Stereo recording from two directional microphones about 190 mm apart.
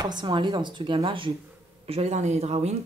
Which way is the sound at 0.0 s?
20° right (ahead or behind).